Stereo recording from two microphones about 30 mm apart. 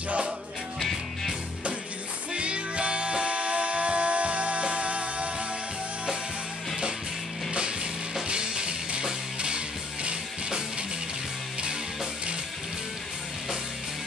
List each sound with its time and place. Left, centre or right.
2.3 s music: right
7.5 s music: right